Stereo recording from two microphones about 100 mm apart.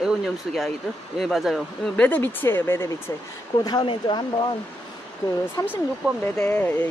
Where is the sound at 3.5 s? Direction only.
45° left (ahead or behind).